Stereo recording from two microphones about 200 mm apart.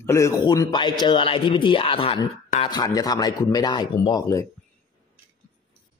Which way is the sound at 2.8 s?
20° left (ahead or behind).